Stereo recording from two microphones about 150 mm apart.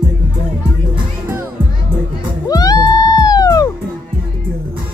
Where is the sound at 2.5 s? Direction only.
25° left (ahead or behind).